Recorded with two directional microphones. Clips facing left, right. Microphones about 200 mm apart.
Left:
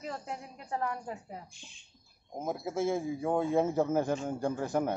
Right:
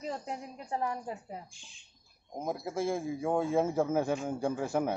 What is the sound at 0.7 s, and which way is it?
Speech, 15° right (ahead or behind).